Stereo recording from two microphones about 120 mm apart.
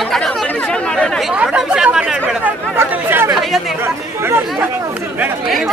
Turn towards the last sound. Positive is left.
turn(degrees=-5)  # may be behind; listen again after turning